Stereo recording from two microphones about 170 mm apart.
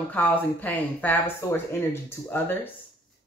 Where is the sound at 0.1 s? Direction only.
10° left (ahead or behind).